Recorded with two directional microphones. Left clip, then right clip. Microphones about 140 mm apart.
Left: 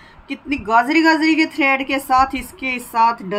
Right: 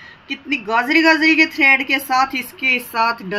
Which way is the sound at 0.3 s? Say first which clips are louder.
Left 2 dB; 20° left (ahead or behind).